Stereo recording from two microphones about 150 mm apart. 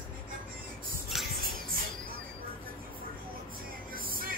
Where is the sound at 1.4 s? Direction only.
75° right (ahead or behind).